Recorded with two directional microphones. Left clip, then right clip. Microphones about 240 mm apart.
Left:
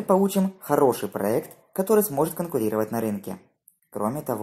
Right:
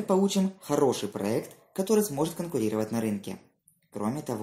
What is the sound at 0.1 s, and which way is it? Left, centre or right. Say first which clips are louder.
Speech: left 5 dB; left.